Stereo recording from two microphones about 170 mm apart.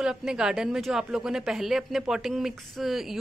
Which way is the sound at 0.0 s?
5° right (ahead or behind).